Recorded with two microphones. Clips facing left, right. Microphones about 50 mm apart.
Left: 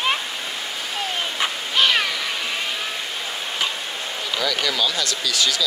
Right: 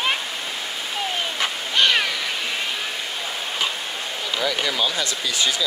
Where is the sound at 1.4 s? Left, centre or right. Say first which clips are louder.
Even; centre.